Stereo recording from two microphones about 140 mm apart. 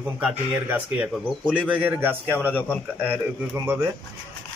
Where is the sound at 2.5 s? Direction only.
15° left (ahead or behind).